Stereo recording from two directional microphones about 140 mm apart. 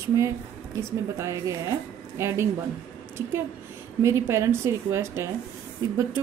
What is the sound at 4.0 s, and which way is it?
A woman's voice, 20° right (ahead or behind).